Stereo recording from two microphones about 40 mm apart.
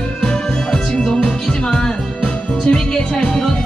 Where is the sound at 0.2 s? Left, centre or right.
Centre.